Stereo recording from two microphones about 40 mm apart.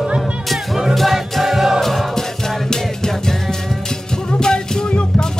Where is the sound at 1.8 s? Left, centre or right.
Centre.